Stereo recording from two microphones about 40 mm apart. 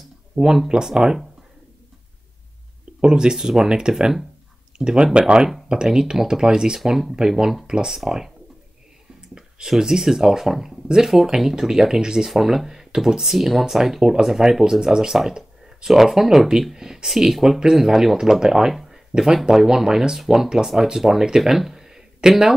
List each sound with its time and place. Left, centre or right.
0.3 s speech: right
0.8 s speech: centre
3.0 s speech: centre
6.8 s speech: centre
9.3 s speech: centre
12.3 s speech: centre
14.6 s speech: centre